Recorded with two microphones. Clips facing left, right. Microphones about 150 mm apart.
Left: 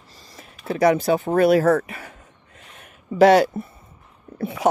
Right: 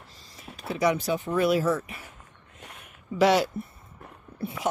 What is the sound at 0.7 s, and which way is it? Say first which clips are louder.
Speech: left 7 dB; 60° left (ahead or behind).